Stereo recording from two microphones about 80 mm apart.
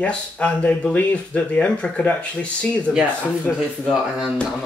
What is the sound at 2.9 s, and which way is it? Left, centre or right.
Speech, centre.